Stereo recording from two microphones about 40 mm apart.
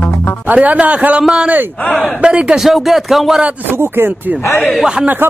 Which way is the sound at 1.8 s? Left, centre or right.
Left.